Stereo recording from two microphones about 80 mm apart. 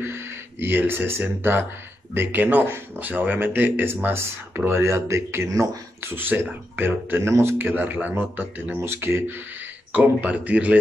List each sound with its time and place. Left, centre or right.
0.0 s a man's voice: right
5.5 s speech: right
6.0 s a man's voice: right
9.9 s speech: centre